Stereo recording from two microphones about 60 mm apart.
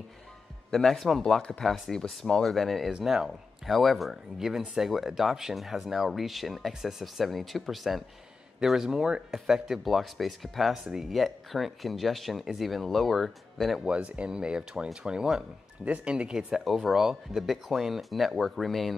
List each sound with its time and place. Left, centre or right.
0.7 s speech: centre
2.9 s speech: centre
13.8 s speech: centre
15.8 s speech: right; by 18.9 s centre